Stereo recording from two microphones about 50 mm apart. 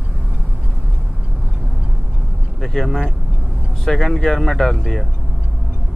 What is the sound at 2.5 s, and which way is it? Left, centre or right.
Speech, centre.